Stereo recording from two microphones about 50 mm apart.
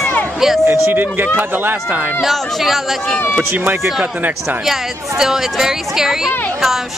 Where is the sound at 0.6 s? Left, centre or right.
Right.